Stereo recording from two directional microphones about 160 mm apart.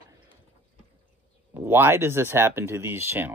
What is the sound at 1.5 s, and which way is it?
Speech, 15° right (ahead or behind).